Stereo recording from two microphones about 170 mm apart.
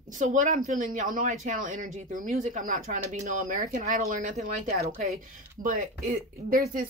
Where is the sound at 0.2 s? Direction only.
45° right (ahead or behind).